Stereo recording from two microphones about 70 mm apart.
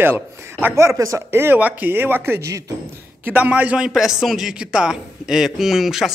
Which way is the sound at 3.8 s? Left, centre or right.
Centre.